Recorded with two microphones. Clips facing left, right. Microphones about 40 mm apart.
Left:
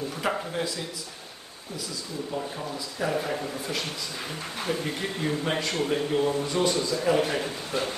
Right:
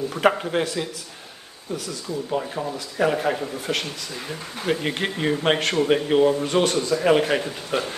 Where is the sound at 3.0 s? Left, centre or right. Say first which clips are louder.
Right 7 dB; right.